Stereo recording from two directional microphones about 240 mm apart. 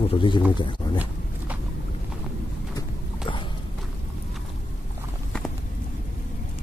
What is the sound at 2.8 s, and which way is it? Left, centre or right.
Boat, centre.